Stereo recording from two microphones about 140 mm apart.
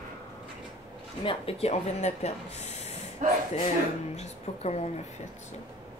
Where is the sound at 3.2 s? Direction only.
65° right (ahead or behind).